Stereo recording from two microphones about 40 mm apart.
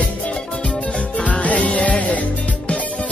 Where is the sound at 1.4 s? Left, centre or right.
Left.